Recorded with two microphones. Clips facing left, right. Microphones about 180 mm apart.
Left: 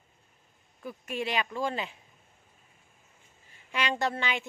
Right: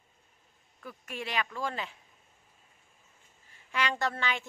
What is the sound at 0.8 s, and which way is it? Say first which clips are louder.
A woman's voice: left 6 dB; 20° left (ahead or behind).